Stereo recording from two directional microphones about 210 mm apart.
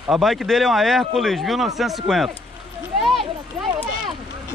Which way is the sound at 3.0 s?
Centre (ahead or behind).